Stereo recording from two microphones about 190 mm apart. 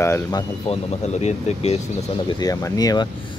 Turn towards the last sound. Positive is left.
turn(degrees=20)  # may be behind; listen again after turning